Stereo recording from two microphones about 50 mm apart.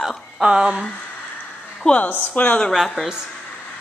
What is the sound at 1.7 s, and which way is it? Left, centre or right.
Speech, centre.